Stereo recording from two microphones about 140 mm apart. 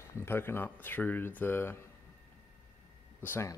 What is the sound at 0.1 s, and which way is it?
Speech, 15° left (ahead or behind).